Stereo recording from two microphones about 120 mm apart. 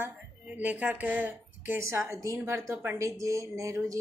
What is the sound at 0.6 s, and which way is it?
Speech, 15° right (ahead or behind).